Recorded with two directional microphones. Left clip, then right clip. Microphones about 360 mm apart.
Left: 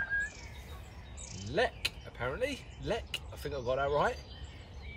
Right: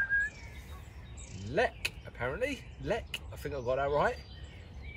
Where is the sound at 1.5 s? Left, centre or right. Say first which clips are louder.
Right 1 dB; centre.